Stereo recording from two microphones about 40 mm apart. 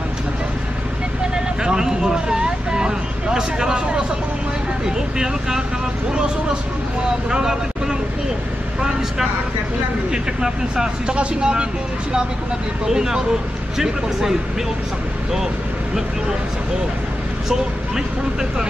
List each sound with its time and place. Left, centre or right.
1.3 s vehicle: centre
7.2 s speech: centre
10.1 s speech: centre
12.8 s speech: centre
17.5 s speech: centre